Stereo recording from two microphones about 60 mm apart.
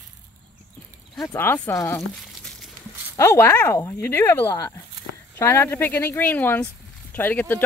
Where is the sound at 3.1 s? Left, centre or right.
Left.